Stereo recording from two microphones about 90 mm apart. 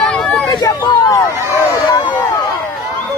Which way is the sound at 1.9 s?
60° left (ahead or behind).